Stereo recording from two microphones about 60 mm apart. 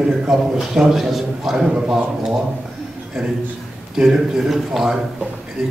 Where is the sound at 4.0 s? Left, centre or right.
Centre.